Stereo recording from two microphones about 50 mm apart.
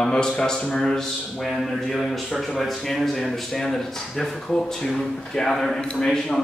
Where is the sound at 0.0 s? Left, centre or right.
Centre.